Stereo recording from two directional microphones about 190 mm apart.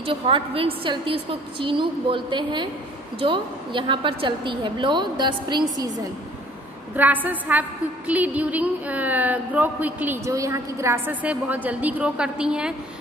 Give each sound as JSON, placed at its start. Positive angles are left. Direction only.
{"t": 0.0, "sound": "a woman's voice", "side_deg": -30}
{"t": 7.0, "sound": "a woman's voice", "side_deg": -10}